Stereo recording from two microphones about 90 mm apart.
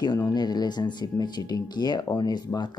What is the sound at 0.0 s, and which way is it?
Speech, 50° left (ahead or behind).